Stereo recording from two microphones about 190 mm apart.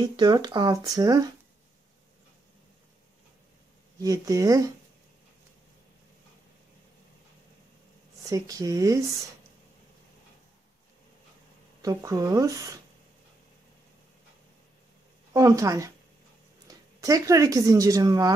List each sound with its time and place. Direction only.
0.0 s speech: 25° right (ahead or behind)
4.0 s speech: 20° right (ahead or behind)
8.2 s speech: 20° right (ahead or behind)
11.8 s speech: 15° right (ahead or behind)
15.3 s speech: 15° right (ahead or behind)